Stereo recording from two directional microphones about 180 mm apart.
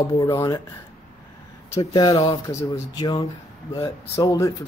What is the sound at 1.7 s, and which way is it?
Speech, 20° left (ahead or behind).